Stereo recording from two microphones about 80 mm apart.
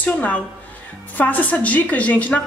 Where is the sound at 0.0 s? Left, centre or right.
Centre.